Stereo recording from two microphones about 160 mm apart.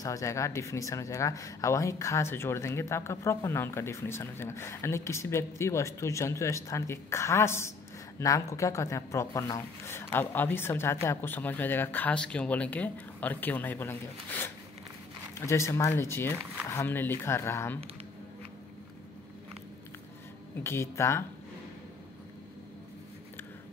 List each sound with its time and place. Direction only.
0.0 s speech: 20° left (ahead or behind)
20.6 s speech: 15° left (ahead or behind)